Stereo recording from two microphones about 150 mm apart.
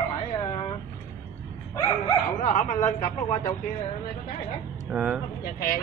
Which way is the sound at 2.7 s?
55° left (ahead or behind).